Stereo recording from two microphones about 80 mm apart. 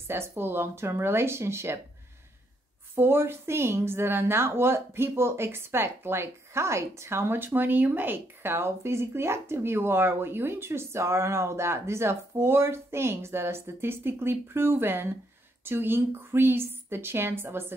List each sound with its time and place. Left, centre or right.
0.4 s a woman's voice: right
3.0 s a woman's voice: right